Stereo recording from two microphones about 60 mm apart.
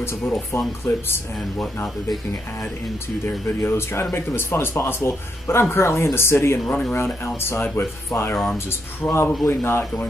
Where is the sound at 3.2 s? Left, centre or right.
Left.